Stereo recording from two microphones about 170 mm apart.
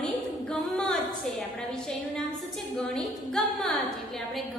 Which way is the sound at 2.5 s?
5° left (ahead or behind).